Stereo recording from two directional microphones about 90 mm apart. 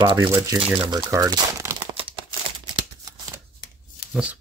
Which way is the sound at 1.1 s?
40° right (ahead or behind).